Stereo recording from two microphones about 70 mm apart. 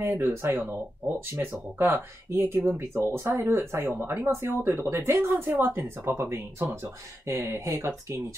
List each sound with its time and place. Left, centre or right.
0.0 s speech: right
3.1 s speech: right